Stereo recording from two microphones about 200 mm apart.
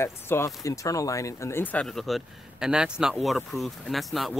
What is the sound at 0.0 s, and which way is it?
Speech, 15° left (ahead or behind).